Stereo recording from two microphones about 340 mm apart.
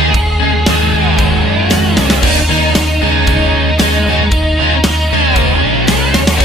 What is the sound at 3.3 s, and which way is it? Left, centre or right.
Music, centre.